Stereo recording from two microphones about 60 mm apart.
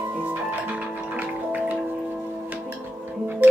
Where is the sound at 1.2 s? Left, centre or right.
Right.